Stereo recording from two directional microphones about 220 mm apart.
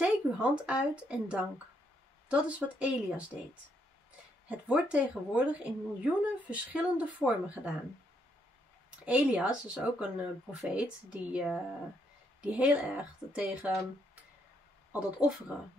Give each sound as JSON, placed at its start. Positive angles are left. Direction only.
{"t": 0.0, "sound": "a woman's voice", "side_deg": -5}
{"t": 4.5, "sound": "a woman's voice", "side_deg": -5}
{"t": 9.0, "sound": "a woman's voice", "side_deg": -5}
{"t": 14.9, "sound": "a woman's voice", "side_deg": -5}